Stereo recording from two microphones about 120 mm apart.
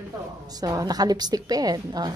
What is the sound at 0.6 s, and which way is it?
A woman's voice, 30° right (ahead or behind).